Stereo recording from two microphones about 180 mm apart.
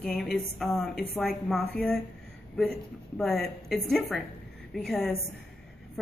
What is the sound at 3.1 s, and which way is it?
A woman's voice, centre (ahead or behind).